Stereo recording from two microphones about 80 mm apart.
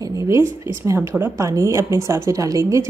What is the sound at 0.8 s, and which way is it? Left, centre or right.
A woman's voice, right.